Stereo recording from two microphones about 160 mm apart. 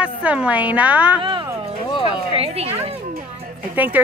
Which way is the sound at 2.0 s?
35° right (ahead or behind).